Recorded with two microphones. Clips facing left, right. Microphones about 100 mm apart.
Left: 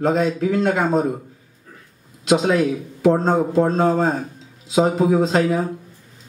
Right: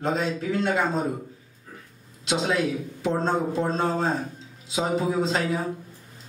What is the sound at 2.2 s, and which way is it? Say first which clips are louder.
A man's voice: left 7 dB; 50° left (ahead or behind).